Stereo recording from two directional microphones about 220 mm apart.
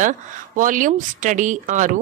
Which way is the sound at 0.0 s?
35° right (ahead or behind).